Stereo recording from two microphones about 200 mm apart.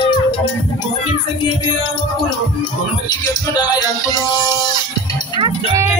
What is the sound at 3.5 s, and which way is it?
Music, 20° left (ahead or behind).